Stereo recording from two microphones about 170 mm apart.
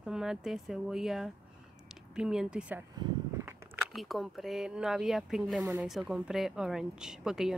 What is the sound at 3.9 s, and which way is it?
Speech, centre (ahead or behind).